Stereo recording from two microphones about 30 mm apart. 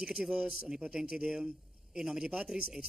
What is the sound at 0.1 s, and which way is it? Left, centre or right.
A man's voice, right.